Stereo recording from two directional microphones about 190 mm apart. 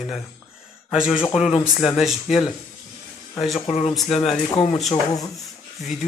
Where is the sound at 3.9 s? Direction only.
Centre (ahead or behind).